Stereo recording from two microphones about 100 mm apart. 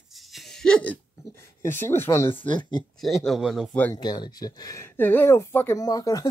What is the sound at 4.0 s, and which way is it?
Speech, 45° left (ahead or behind).